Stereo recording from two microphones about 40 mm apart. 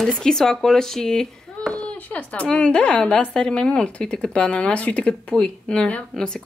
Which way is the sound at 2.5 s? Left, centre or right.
Left.